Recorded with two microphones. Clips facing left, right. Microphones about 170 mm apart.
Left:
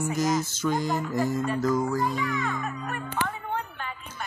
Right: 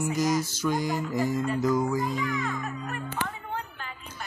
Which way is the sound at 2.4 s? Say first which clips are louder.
Left 1 dB; 80° left.